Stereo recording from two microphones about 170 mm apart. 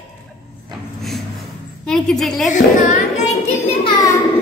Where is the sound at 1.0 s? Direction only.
Centre (ahead or behind).